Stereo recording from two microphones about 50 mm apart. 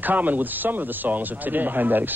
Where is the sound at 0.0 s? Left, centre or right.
Right.